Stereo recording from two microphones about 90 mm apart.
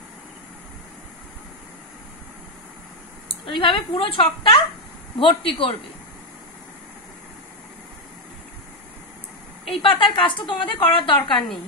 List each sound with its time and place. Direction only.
3.3 s a woman's voice: 75° left (ahead or behind)
9.7 s a woman's voice: 70° left (ahead or behind)